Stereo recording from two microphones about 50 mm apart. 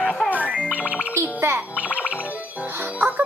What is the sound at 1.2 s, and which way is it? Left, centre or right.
Speech, right.